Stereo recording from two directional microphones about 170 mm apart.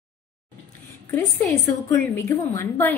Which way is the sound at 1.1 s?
15° left (ahead or behind).